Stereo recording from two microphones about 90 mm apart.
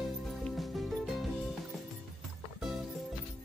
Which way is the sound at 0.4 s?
Centre (ahead or behind).